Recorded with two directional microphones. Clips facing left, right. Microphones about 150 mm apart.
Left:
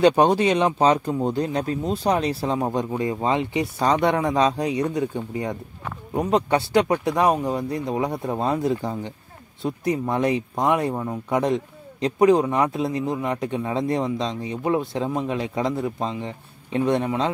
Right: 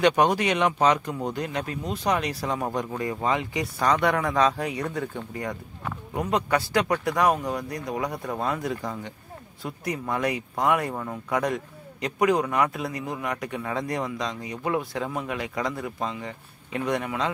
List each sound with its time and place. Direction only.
0.0 s speech: 30° left (ahead or behind)